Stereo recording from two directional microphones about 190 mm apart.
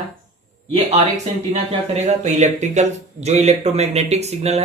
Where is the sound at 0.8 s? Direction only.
35° right (ahead or behind).